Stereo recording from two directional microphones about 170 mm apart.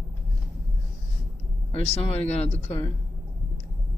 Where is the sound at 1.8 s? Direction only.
35° left (ahead or behind).